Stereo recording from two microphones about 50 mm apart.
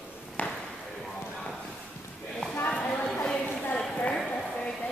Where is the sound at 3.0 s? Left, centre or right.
Centre.